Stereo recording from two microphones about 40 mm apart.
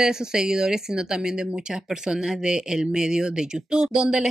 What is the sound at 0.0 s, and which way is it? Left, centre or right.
Speech, centre.